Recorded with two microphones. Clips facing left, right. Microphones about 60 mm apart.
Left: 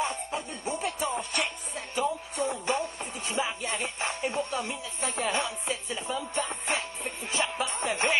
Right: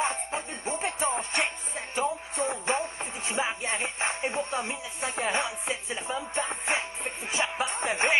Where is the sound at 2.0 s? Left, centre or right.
Right.